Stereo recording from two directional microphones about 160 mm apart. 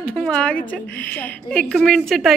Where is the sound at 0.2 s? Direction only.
5° left (ahead or behind).